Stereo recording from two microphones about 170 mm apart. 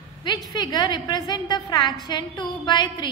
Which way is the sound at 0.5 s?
25° left (ahead or behind).